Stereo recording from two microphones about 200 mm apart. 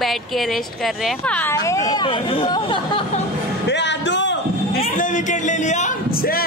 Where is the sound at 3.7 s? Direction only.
60° left (ahead or behind).